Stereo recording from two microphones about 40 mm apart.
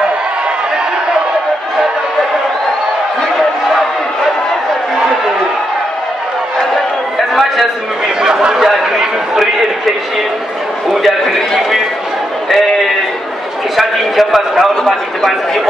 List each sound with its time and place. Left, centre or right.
8.2 s chatter: centre
8.5 s a sound: centre
12.4 s sheep: centre
13.7 s a man's voice: centre
14.7 s a man's voice: centre